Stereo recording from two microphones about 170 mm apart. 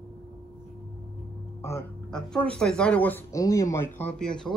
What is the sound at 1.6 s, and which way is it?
Music, 15° left (ahead or behind).